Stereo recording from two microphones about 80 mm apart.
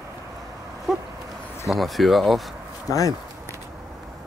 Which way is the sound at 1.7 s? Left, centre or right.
Centre.